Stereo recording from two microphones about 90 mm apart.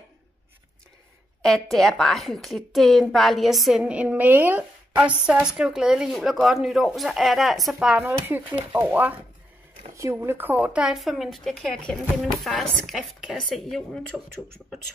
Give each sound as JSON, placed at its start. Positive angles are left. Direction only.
{"t": 1.4, "sound": "speech", "side_deg": 5}
{"t": 7.9, "sound": "speech", "side_deg": -15}
{"t": 10.1, "sound": "speech", "side_deg": -25}